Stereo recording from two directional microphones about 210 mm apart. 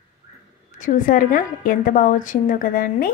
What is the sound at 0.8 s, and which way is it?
A woman's voice, 40° left (ahead or behind).